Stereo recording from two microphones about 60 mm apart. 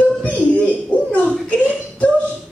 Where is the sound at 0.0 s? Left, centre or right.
Left.